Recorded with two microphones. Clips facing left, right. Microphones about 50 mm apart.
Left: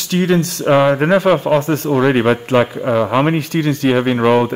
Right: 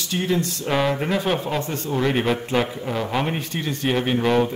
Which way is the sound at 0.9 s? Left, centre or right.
Left.